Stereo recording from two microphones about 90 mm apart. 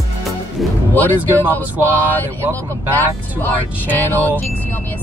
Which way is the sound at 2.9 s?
20° left (ahead or behind).